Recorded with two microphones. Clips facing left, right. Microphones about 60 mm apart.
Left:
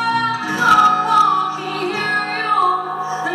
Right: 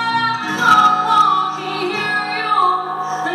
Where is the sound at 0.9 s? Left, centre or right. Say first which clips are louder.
Right 1 dB; left.